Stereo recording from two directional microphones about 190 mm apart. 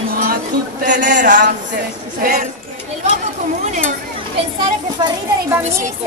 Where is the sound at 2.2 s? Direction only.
50° right (ahead or behind).